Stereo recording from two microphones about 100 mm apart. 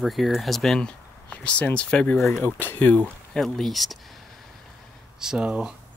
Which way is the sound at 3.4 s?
Centre (ahead or behind).